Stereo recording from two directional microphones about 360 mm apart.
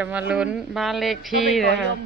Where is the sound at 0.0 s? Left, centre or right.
Centre.